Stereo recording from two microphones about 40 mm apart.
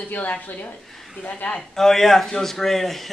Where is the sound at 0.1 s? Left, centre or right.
Left.